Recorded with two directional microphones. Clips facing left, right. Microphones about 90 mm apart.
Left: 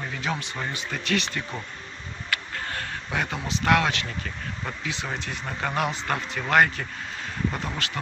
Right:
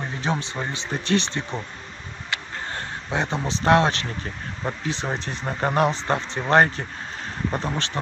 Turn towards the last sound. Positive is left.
turn(degrees=-35)  # may be behind; listen again after turning